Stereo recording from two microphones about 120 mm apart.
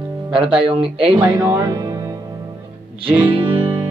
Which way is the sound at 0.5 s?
5° right (ahead or behind).